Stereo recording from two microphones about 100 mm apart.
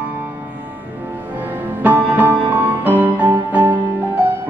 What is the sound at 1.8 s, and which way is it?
Music, 20° right (ahead or behind).